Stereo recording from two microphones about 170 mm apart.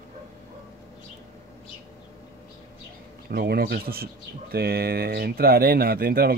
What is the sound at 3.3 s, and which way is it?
Speech, 65° right (ahead or behind).